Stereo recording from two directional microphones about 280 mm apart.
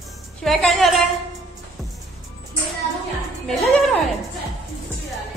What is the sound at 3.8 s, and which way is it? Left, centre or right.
Music, centre.